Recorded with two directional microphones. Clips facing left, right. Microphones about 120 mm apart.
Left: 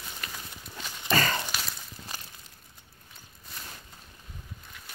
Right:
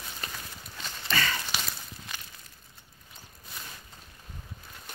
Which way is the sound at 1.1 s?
40° left (ahead or behind).